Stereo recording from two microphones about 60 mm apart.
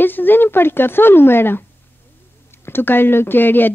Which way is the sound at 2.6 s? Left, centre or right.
Left.